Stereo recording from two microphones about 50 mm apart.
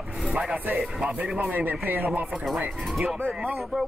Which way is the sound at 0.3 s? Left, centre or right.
Centre.